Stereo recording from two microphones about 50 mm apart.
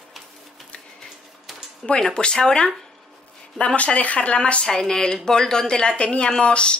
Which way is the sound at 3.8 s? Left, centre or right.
Left.